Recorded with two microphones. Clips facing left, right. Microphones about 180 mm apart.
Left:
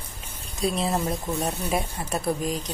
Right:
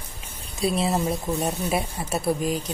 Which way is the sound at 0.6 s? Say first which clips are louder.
Right 2 dB; centre (ahead or behind).